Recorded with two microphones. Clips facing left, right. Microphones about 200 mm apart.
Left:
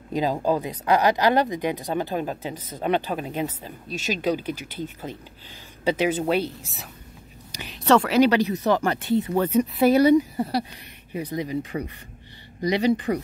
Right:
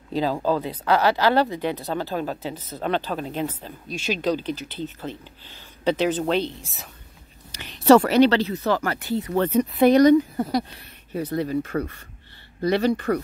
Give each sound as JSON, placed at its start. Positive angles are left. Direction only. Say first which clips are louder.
{"t": 0.1, "sound": "speech", "louder": "even", "side_deg": 15}
{"t": 8.1, "sound": "speech", "louder": "right 1 dB", "side_deg": 10}
{"t": 9.5, "sound": "speech", "louder": "right 1 dB", "side_deg": -35}
{"t": 9.8, "sound": "speech", "louder": "right 2 dB", "side_deg": 10}